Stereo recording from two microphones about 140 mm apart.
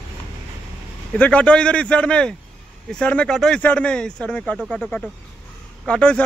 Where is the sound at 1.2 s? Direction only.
10° left (ahead or behind).